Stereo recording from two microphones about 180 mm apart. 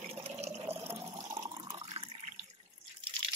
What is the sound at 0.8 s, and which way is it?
Water, 15° right (ahead or behind).